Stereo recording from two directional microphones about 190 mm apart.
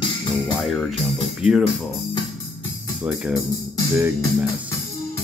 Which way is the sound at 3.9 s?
10° right (ahead or behind).